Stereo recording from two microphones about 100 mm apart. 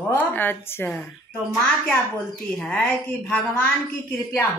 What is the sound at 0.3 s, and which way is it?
Speech, 20° left (ahead or behind).